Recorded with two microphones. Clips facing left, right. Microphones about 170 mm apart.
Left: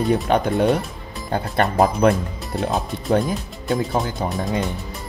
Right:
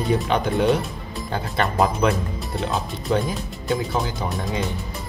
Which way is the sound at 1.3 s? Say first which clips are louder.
Left 4 dB; 55° left (ahead or behind).